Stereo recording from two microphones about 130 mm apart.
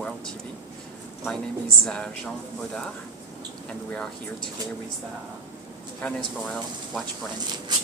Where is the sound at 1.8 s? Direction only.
5° left (ahead or behind).